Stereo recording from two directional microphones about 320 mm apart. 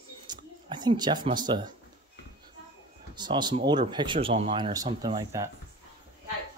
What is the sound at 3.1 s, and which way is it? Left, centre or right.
Speech, centre.